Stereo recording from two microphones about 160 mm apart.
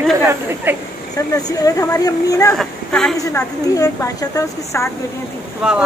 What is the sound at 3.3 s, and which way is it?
A woman's voice, 20° left (ahead or behind).